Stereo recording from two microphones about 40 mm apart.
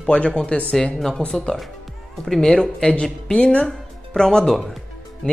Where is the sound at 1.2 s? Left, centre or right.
Left.